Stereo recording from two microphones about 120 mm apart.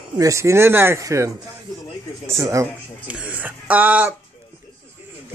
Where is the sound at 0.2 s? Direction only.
25° right (ahead or behind).